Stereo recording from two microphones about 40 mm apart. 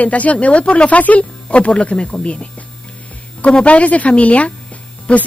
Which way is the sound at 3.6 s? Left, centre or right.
Left.